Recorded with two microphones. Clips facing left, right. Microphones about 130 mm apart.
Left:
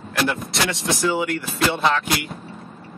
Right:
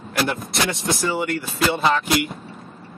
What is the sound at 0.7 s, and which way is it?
Speech, centre (ahead or behind).